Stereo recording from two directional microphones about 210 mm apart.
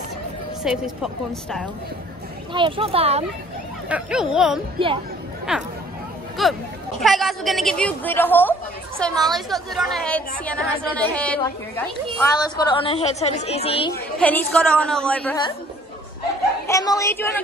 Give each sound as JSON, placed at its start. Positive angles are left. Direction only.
{"t": 0.7, "sound": "a woman's voice", "side_deg": 0}
{"t": 2.5, "sound": "speech", "side_deg": -25}
{"t": 3.9, "sound": "a woman's voice", "side_deg": -5}
{"t": 4.7, "sound": "speech", "side_deg": -25}
{"t": 5.5, "sound": "a woman's voice", "side_deg": -5}
{"t": 12.4, "sound": "a woman's voice", "side_deg": 25}
{"t": 14.1, "sound": "a woman's voice", "side_deg": 5}
{"t": 16.6, "sound": "a woman's voice", "side_deg": 15}